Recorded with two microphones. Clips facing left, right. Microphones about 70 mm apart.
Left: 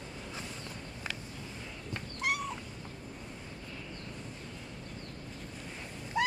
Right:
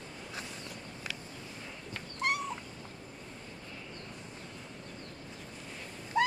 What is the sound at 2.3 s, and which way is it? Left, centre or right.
Cat, centre.